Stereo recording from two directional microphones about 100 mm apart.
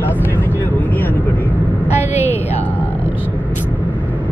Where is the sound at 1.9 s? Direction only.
90° left.